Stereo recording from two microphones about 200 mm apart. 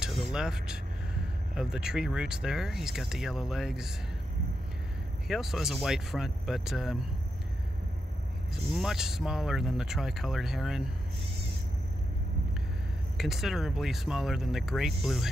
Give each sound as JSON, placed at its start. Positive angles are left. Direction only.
{"t": 0.0, "sound": "vehicle", "side_deg": -5}
{"t": 1.5, "sound": "speech", "side_deg": -5}
{"t": 5.3, "sound": "speech", "side_deg": 0}
{"t": 8.7, "sound": "speech", "side_deg": 0}
{"t": 13.2, "sound": "speech", "side_deg": 0}